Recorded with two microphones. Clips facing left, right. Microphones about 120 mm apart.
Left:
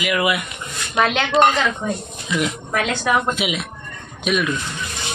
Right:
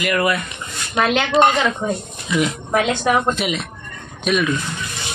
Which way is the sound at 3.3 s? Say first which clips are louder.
Right 2 dB; 5° left (ahead or behind).